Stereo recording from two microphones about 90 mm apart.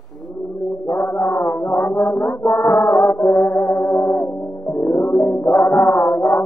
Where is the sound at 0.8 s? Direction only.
25° left (ahead or behind).